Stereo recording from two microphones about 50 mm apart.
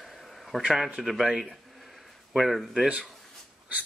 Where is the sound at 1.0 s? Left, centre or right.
Centre.